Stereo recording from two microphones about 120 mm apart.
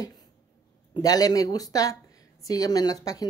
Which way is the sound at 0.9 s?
30° left (ahead or behind).